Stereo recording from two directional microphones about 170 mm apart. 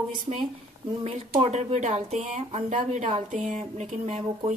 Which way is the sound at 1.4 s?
40° right (ahead or behind).